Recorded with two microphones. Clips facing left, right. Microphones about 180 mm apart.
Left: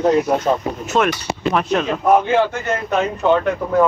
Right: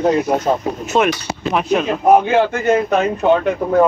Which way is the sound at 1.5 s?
5° right (ahead or behind).